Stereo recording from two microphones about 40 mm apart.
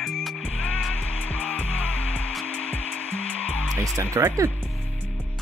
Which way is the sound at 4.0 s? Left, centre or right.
Right.